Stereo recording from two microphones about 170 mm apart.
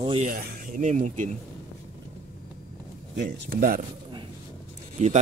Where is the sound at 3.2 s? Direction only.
60° right (ahead or behind).